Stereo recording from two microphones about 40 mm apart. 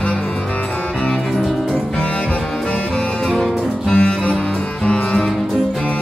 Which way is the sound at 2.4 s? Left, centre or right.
Centre.